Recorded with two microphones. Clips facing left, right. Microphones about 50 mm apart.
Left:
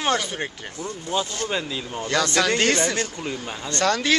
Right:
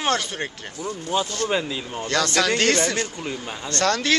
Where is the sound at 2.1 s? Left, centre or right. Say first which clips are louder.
Even; centre.